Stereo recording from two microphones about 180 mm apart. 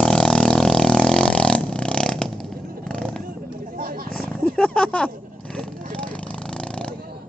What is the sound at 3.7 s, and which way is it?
Wild animals, 50° right (ahead or behind).